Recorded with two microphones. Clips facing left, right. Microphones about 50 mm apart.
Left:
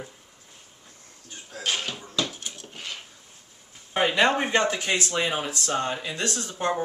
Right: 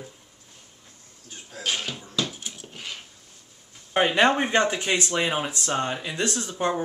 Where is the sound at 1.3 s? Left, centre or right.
Centre.